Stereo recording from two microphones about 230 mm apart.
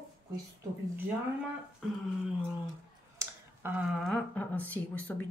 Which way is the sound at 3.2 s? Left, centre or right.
Centre.